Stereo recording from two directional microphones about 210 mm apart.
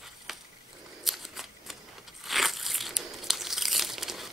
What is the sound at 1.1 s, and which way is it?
Shuffling cards, centre (ahead or behind).